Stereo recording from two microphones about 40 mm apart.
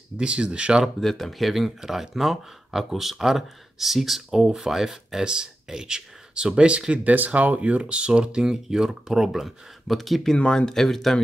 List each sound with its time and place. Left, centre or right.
0.2 s speech: right
1.0 s speech: centre
1.5 s speech: centre; by 6.8 s right
7.2 s speech: right
8.5 s speech: centre
10.3 s speech: left